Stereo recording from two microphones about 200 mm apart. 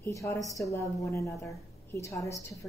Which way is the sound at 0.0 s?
15° left (ahead or behind).